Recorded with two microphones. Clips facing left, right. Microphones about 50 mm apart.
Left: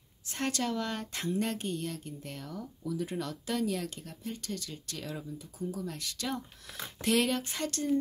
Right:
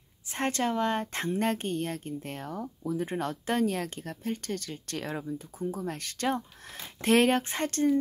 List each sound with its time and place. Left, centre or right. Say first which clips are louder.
0.3 s speech: right 4 dB; right